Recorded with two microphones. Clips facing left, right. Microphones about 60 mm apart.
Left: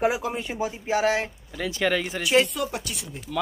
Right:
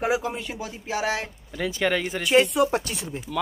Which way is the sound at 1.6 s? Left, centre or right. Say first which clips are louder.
Even; centre.